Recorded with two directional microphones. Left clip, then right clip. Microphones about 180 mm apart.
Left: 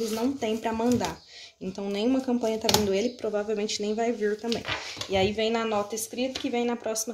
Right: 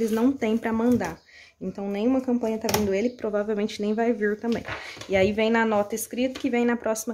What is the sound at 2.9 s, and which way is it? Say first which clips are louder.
Speech: right 2 dB; 20° right (ahead or behind).